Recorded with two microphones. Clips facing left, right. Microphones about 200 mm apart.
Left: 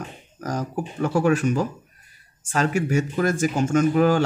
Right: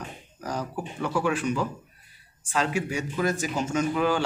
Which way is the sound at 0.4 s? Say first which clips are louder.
Left 4 dB; 45° left (ahead or behind).